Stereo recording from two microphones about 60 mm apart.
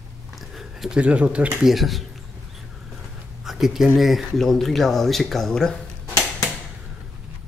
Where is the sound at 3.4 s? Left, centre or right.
Centre.